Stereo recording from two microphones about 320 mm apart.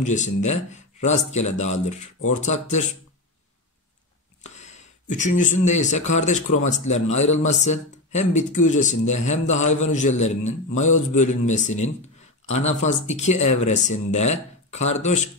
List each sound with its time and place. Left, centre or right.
0.0 s speech: left
4.4 s speech: left